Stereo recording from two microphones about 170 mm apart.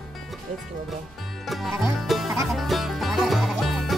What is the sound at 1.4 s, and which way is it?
Music, centre (ahead or behind).